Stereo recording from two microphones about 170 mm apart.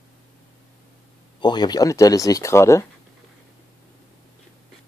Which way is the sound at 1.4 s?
25° left (ahead or behind).